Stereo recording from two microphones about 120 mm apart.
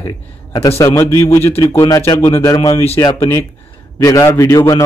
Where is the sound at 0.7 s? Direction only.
25° left (ahead or behind).